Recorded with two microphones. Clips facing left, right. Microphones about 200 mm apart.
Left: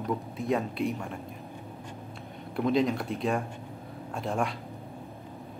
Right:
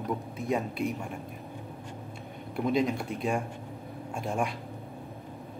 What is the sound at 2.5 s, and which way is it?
Speech, centre (ahead or behind).